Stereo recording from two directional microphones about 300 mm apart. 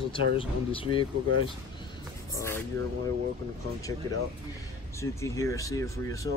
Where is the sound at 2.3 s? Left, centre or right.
Centre.